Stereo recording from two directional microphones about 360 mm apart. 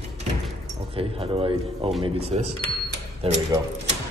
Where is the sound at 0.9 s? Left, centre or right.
Centre.